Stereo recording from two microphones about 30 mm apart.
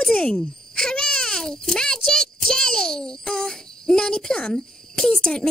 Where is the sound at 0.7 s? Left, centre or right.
Left.